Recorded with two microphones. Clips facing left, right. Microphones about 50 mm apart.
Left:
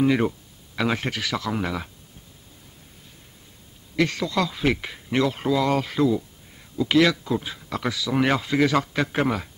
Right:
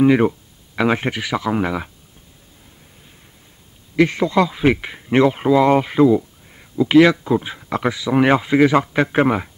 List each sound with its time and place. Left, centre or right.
0.0 s speech: right
3.9 s speech: right